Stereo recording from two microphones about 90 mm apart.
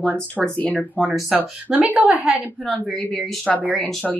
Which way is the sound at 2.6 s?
5° left (ahead or behind).